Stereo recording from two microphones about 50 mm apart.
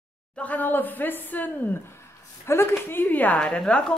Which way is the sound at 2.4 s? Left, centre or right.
Left.